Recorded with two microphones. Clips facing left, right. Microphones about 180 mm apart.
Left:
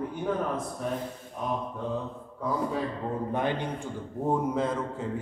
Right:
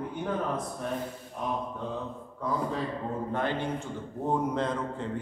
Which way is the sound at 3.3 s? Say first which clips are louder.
Left 1 dB; 15° left (ahead or behind).